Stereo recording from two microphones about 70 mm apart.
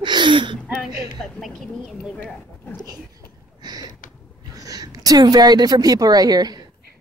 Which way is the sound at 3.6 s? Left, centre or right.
Right.